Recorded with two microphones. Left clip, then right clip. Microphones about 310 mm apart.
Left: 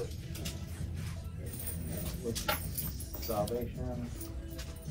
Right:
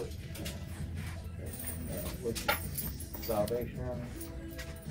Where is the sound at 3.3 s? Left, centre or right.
Right.